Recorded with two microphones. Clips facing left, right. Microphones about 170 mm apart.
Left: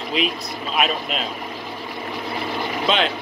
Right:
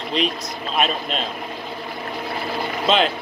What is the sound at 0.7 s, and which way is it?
Speech, 5° left (ahead or behind).